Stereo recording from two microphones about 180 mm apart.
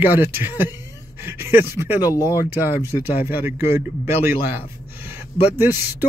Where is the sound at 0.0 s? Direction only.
10° right (ahead or behind).